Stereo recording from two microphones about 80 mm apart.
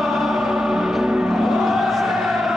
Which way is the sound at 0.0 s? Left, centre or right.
Centre.